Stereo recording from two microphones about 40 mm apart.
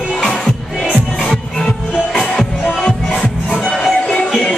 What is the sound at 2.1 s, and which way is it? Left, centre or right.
Music, centre.